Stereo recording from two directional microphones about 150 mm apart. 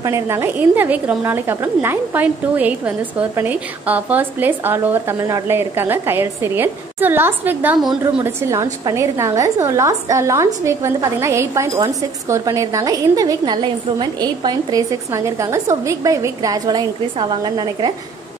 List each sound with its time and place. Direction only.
0.0 s a woman's voice: 20° right (ahead or behind)